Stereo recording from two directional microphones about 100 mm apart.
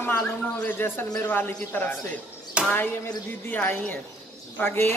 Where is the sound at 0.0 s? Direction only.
25° left (ahead or behind).